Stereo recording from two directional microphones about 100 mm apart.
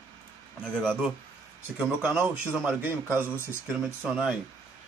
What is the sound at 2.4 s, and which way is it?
A man's voice, 25° right (ahead or behind).